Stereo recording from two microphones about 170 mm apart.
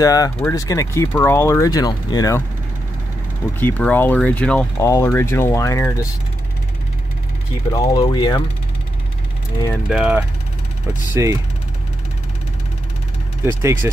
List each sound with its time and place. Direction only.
0.0 s speech: 20° left (ahead or behind)
3.5 s speech: 10° left (ahead or behind)
7.7 s speech: 20° left (ahead or behind)
9.8 s speech: 5° right (ahead or behind)
11.2 s speech: 15° right (ahead or behind)
13.5 s speech: 15° right (ahead or behind)